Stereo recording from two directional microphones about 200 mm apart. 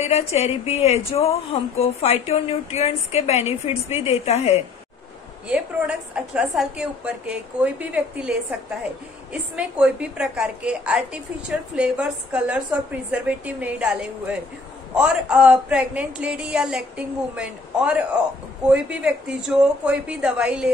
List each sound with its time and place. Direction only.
0.0 s a woman's voice: 30° left (ahead or behind)
5.5 s a woman's voice: 5° right (ahead or behind)
15.0 s a woman's voice: 5° right (ahead or behind)